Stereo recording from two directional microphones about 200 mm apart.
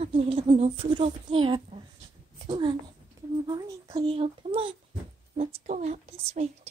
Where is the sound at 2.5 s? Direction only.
25° right (ahead or behind).